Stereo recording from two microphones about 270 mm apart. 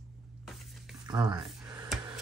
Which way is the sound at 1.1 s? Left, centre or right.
Centre.